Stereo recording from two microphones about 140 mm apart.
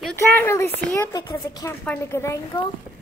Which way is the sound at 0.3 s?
15° left (ahead or behind).